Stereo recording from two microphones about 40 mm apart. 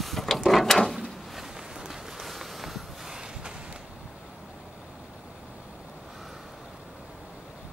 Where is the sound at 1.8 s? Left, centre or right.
Centre.